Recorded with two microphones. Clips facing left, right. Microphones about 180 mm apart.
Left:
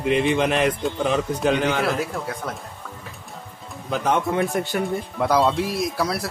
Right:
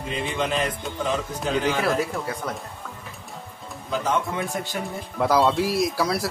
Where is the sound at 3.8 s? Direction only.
60° left (ahead or behind).